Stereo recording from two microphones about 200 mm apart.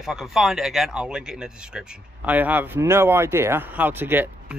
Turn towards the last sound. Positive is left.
turn(degrees=-10)  # may be behind; listen again after turning